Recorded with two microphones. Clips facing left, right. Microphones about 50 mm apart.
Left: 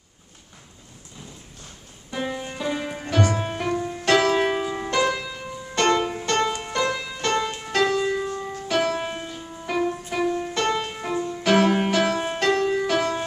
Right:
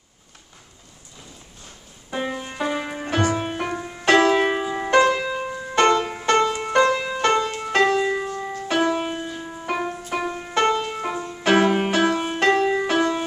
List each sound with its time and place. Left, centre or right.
2.0 s music: centre
3.1 s music: right